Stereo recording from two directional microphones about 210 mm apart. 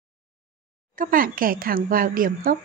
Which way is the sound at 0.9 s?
40° right (ahead or behind).